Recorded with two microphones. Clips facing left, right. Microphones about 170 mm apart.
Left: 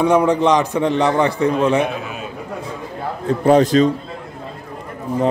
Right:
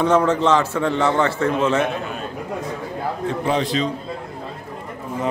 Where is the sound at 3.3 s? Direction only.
45° left (ahead or behind).